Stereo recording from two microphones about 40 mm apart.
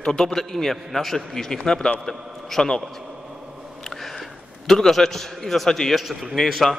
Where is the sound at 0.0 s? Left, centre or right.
Centre.